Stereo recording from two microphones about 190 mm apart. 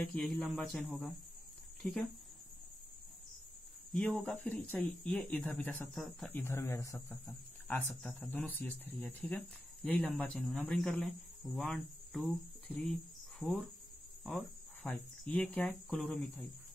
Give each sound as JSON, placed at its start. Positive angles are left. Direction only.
{"t": 0.1, "sound": "speech", "side_deg": 5}
{"t": 3.9, "sound": "speech", "side_deg": 5}
{"t": 6.4, "sound": "speech", "side_deg": 15}
{"t": 7.9, "sound": "speech", "side_deg": 5}
{"t": 13.4, "sound": "cricket", "side_deg": 5}
{"t": 14.2, "sound": "speech", "side_deg": 10}